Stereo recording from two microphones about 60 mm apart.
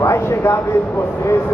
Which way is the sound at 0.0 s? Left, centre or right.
Left.